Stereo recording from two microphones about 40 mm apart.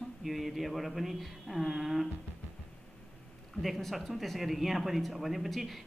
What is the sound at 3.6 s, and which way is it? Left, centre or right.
A man's voice, centre.